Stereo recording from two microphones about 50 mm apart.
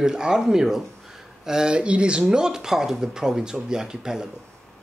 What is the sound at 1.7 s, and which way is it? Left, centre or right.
Speech, right.